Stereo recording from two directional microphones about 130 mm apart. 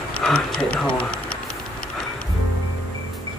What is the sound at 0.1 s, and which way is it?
Speech, 5° left (ahead or behind).